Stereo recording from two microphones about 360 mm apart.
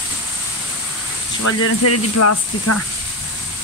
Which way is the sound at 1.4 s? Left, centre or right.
Left.